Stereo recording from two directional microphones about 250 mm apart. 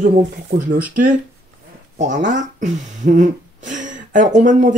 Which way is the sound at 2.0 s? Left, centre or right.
Right.